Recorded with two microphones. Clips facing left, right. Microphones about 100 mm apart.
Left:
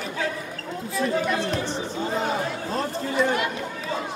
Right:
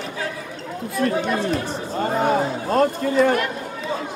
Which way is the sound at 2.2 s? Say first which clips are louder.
Right 7 dB; 50° right (ahead or behind).